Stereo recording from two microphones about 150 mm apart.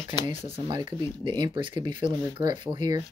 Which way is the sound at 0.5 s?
35° right (ahead or behind).